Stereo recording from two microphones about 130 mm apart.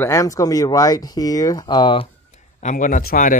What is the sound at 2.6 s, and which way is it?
Speech, 80° left.